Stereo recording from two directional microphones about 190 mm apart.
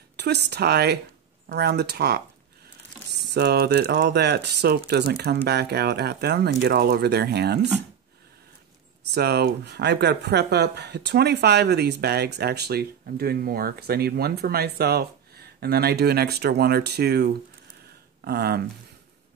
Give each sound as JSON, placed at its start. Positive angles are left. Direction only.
{"t": 0.1, "sound": "speech", "side_deg": -60}
{"t": 3.3, "sound": "speech", "side_deg": -60}
{"t": 9.0, "sound": "speech", "side_deg": -60}